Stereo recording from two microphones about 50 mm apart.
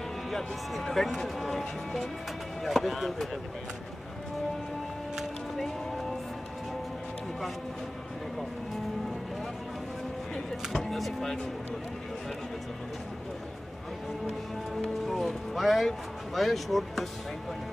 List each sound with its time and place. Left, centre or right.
0.3 s speech: centre
5.6 s music: centre
10.7 s speech: centre
14.8 s speech: centre